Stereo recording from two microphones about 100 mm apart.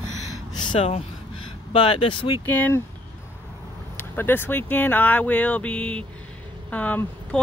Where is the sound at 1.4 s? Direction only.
60° left (ahead or behind).